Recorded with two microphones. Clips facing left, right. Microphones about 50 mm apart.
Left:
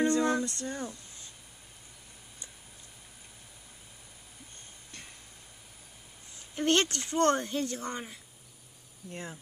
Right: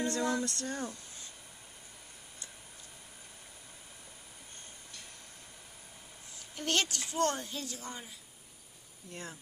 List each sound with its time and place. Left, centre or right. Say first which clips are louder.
0.0 s a sound: left 6 dB; left
0.5 s speech: left 1 dB; centre
6.5 s speech: left 6 dB; left